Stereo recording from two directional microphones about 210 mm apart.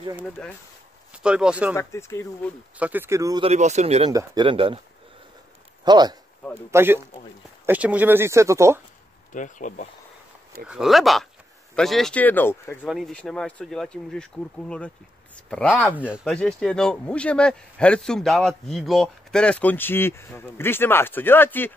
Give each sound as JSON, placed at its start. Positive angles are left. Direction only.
{"t": 0.2, "sound": "speech", "side_deg": 5}
{"t": 1.1, "sound": "speech", "side_deg": -5}
{"t": 1.8, "sound": "speech", "side_deg": 15}
{"t": 2.8, "sound": "speech", "side_deg": -10}
{"t": 3.4, "sound": "speech", "side_deg": -35}
{"t": 4.1, "sound": "speech", "side_deg": -20}
{"t": 5.9, "sound": "speech", "side_deg": -20}
{"t": 9.3, "sound": "speech", "side_deg": 35}
{"t": 10.7, "sound": "a man's voice", "side_deg": 0}
{"t": 12.8, "sound": "a man's voice", "side_deg": 0}